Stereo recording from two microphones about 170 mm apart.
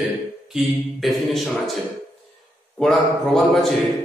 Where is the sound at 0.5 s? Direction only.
Centre (ahead or behind).